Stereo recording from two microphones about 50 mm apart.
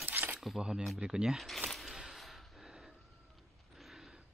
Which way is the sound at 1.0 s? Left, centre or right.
Centre.